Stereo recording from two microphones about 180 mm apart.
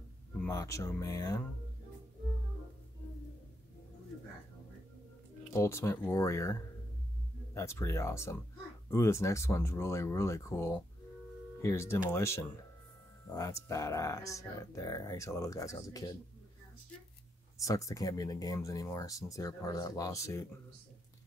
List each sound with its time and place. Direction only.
0.4 s speech: 15° left (ahead or behind)
5.5 s speech: 15° left (ahead or behind)
17.6 s speech: 20° left (ahead or behind)